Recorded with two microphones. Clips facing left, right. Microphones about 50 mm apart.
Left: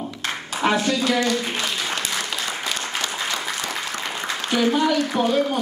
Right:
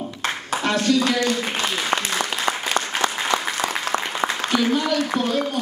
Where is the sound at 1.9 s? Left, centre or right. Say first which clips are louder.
Right 3 dB; right.